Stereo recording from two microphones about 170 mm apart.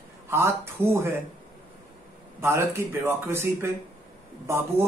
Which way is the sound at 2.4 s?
15° right (ahead or behind).